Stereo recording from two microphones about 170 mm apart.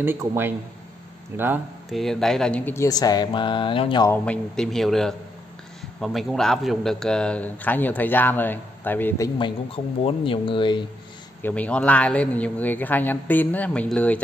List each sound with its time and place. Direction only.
0.0 s a man's voice: 15° right (ahead or behind)
1.9 s speech: centre (ahead or behind); by 4.0 s 30° left (ahead or behind)
4.0 s a man's voice: 10° left (ahead or behind)
9.4 s speech: 30° left (ahead or behind)
11.4 s a man's voice: 10° left (ahead or behind)